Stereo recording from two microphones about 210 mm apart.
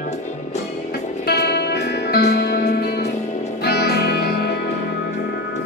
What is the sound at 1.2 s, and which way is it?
Music, 50° left (ahead or behind).